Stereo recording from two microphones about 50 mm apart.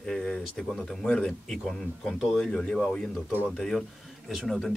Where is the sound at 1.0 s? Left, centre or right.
Centre.